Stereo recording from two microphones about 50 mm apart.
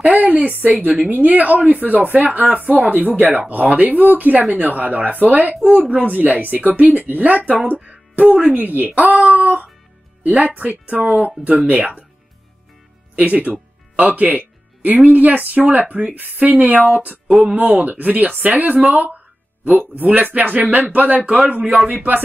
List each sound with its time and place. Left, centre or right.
0.0 s speech: right
13.1 s speech: right
13.9 s music: right
15.0 s speech: right